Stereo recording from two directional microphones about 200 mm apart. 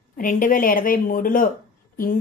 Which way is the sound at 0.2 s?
40° left (ahead or behind).